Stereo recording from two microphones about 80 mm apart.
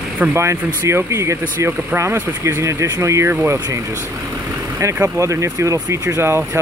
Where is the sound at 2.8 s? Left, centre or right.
Right.